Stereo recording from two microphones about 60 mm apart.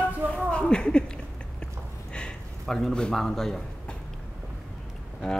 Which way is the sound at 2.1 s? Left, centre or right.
Centre.